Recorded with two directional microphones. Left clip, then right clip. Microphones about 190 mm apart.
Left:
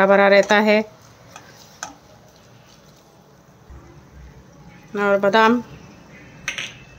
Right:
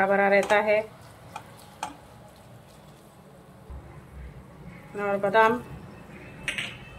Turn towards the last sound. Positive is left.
turn(degrees=60)  # may be behind; listen again after turning